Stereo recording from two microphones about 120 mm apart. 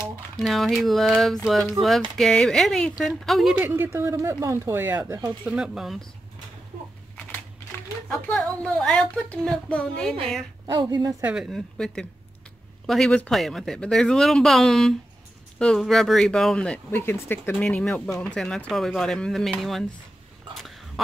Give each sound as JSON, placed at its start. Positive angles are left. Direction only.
{"t": 0.4, "sound": "speech", "side_deg": 0}
{"t": 3.5, "sound": "speech", "side_deg": -15}
{"t": 8.4, "sound": "speech", "side_deg": 5}
{"t": 10.7, "sound": "a woman's voice", "side_deg": -35}
{"t": 11.5, "sound": "speech", "side_deg": 5}
{"t": 20.5, "sound": "whispering", "side_deg": 0}